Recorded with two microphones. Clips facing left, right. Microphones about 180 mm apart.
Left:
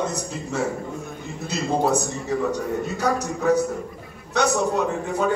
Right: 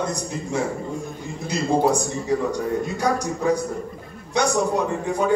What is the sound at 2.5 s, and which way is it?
A man's voice, 10° right (ahead or behind).